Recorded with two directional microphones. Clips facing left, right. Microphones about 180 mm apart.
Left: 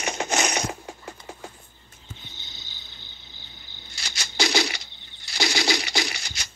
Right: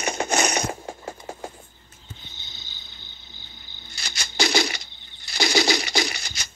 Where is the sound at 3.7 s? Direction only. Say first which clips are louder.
Right 1 dB; 55° right (ahead or behind).